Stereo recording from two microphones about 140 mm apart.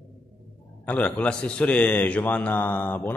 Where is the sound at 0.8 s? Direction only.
10° left (ahead or behind).